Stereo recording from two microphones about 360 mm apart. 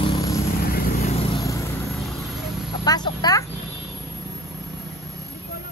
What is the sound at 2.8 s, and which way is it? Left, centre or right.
Speech, centre.